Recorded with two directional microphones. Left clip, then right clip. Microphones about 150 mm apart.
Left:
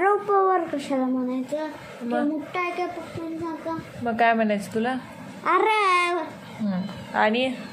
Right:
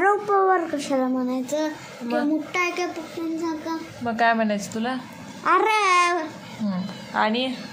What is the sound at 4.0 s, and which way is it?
Speech, 5° left (ahead or behind).